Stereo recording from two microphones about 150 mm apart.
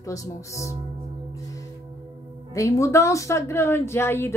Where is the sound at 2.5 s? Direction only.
20° left (ahead or behind).